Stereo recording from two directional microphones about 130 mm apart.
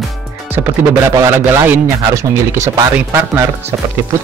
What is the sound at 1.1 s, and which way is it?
Speech, 25° right (ahead or behind).